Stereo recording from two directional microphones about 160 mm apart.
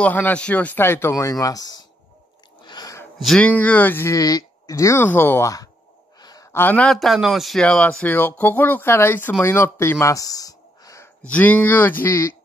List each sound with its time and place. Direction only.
0.0 s a man's voice: 10° left (ahead or behind)
2.6 s a sound: 25° left (ahead or behind)
3.2 s a man's voice: 5° left (ahead or behind); by 11.1 s 20° left (ahead or behind)
11.2 s a man's voice: 10° left (ahead or behind)